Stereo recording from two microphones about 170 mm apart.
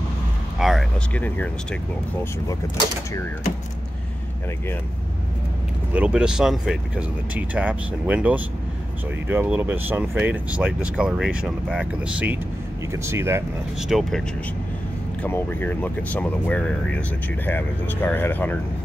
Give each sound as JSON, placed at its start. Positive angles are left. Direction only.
{"t": 0.6, "sound": "speech", "side_deg": 0}
{"t": 1.1, "sound": "speech", "side_deg": 10}
{"t": 5.9, "sound": "speech", "side_deg": -5}
{"t": 13.7, "sound": "speech", "side_deg": 0}
{"t": 15.2, "sound": "speech", "side_deg": 10}